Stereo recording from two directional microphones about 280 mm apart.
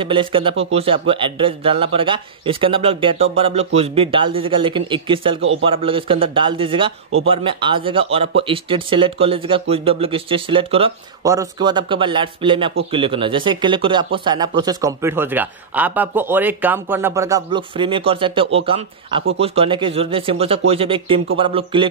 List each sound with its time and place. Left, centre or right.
0.0 s speech: centre